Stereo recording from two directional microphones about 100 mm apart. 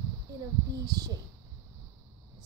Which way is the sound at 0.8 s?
40° right (ahead or behind).